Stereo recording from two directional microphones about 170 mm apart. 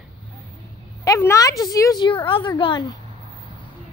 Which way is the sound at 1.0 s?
20° left (ahead or behind).